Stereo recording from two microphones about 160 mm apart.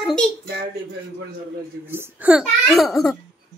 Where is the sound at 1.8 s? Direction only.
10° right (ahead or behind).